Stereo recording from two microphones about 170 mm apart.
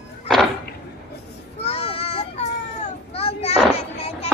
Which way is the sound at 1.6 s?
35° left (ahead or behind).